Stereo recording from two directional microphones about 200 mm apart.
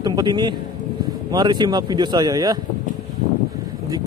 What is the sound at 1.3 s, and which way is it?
Speech, 20° right (ahead or behind).